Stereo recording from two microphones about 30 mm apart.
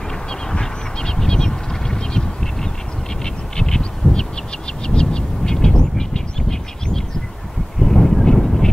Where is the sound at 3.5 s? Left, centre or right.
Centre.